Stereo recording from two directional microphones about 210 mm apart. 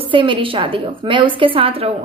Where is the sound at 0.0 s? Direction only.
25° right (ahead or behind).